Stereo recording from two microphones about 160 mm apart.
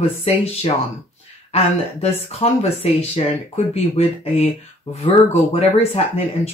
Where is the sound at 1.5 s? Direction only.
40° left (ahead or behind).